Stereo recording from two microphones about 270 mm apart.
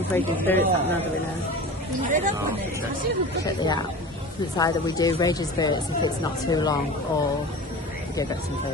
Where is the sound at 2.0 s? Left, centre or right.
Right.